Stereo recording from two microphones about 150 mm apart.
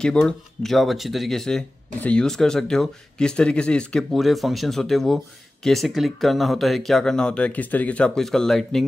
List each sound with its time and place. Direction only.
0.0 s speech: 5° left (ahead or behind)